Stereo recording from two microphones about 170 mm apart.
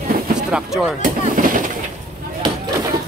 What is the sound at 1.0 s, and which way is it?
Vehicle, 55° right (ahead or behind).